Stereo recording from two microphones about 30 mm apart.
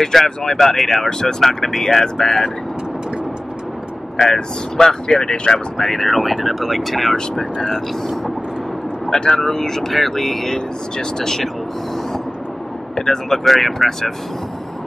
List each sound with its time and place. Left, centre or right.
0.0 s speech: centre
4.2 s speech: centre
5.1 s speech: left
5.8 s speech: centre
9.3 s speech: centre
10.5 s speech: centre
12.9 s speech: centre
13.4 s speech: centre